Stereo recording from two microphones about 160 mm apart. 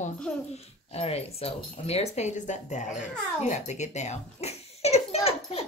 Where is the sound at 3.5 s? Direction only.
45° left (ahead or behind).